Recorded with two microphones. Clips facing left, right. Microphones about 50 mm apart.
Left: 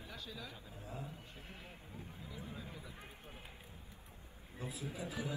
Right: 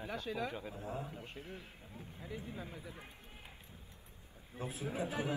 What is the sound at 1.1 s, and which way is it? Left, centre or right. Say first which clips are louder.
A man's voice: right 6 dB; right.